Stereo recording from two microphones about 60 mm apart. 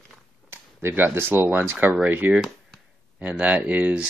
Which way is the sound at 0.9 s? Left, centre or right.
Right.